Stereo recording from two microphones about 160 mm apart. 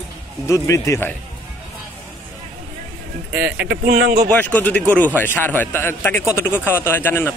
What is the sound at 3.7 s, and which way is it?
Speech, 85° right.